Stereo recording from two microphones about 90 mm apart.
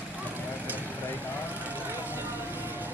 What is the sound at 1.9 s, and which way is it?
Vehicle, 20° right (ahead or behind).